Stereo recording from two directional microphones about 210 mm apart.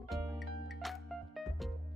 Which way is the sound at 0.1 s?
Centre (ahead or behind).